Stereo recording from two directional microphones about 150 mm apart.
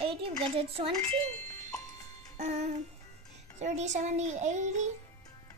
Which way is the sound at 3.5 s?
50° right (ahead or behind).